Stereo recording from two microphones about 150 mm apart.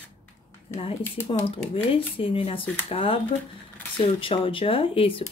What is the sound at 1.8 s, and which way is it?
Speech, 35° left (ahead or behind).